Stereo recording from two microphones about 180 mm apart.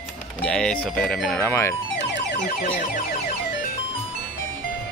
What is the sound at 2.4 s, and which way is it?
Music, 45° left (ahead or behind).